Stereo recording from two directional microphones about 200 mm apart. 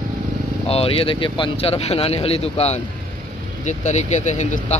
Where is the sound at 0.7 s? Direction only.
30° left (ahead or behind).